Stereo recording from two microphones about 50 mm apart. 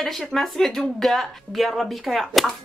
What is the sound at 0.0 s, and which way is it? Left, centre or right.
A woman's voice, centre.